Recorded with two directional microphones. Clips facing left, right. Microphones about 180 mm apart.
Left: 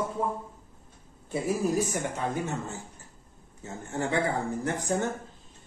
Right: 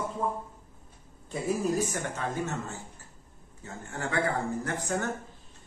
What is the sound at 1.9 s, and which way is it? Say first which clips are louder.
A man's voice: left 2 dB; 15° left (ahead or behind).